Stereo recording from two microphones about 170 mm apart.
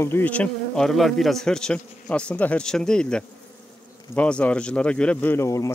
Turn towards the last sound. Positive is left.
turn(degrees=15)  # may be behind; listen again after turning